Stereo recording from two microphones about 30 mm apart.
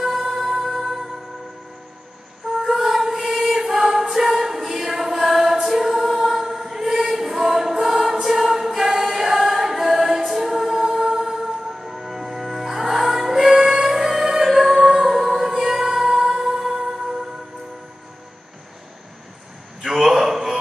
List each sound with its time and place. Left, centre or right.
0.0 s music: centre
2.7 s music: centre
3.5 s choir: centre
14.9 s music: centre
19.9 s a sound: centre